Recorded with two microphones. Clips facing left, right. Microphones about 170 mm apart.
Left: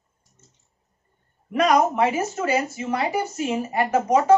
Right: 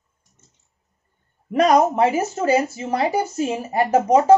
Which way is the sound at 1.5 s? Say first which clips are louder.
Right 3 dB; 35° right (ahead or behind).